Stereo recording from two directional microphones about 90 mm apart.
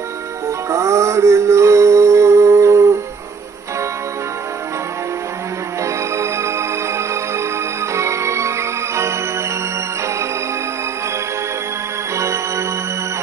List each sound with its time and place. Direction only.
0.7 s music: 30° right (ahead or behind)
5.9 s music: 35° right (ahead or behind)
7.9 s music: 35° right (ahead or behind)
12.2 s music: 35° right (ahead or behind)